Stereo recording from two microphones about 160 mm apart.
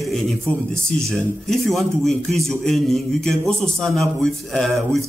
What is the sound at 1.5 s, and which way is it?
A man's voice, centre (ahead or behind).